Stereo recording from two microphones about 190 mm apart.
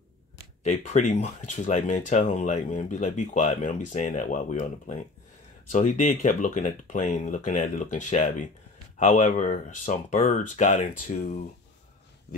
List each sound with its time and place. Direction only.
0.7 s speech: 35° left (ahead or behind)